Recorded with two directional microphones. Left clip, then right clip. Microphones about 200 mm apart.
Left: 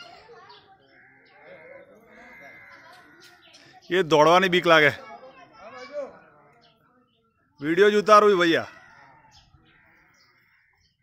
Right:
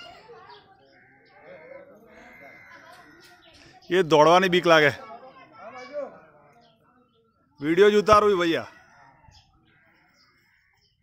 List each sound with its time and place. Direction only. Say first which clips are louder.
3.6 s a man's voice: right 1 dB; 5° right (ahead or behind)
5.6 s children playing: even; 20° left (ahead or behind)
7.6 s a man's voice: right 1 dB; centre (ahead or behind)